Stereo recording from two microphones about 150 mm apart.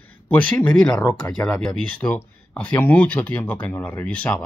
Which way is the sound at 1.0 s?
30° left (ahead or behind).